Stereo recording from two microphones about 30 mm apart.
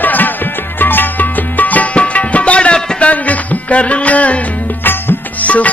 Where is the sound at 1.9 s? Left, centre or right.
Left.